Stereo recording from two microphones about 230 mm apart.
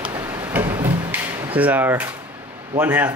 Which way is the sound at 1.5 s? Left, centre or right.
Centre.